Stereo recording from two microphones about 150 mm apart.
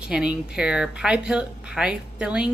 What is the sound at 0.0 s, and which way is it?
Speech, 5° right (ahead or behind).